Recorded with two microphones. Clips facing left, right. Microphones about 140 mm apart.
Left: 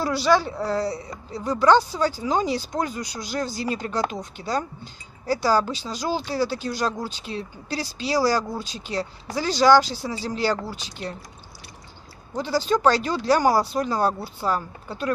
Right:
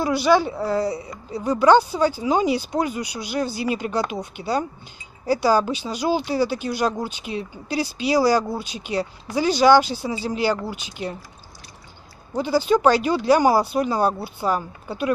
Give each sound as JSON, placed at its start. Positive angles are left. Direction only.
{"t": 0.0, "sound": "speech", "side_deg": -15}
{"t": 12.4, "sound": "speech", "side_deg": -15}